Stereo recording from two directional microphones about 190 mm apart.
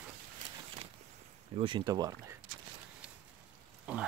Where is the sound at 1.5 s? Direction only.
25° right (ahead or behind).